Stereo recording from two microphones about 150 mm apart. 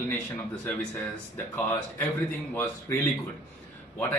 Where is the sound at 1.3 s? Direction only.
10° left (ahead or behind).